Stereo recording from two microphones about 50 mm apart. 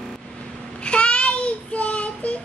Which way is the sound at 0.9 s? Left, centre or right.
Left.